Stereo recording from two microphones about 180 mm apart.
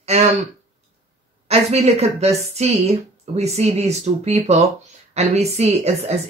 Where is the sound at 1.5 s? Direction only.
35° right (ahead or behind).